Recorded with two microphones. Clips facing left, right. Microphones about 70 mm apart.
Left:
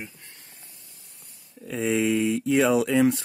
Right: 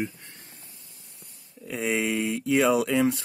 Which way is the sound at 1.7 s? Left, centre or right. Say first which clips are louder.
Left 3 dB; right.